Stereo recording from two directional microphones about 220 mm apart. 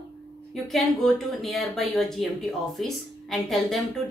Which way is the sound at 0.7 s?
Centre (ahead or behind).